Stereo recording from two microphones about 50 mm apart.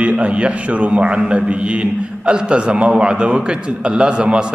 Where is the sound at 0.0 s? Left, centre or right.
Right.